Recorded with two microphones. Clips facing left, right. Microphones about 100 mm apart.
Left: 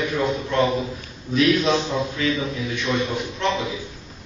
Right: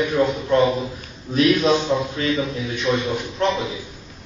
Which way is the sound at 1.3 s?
35° right (ahead or behind).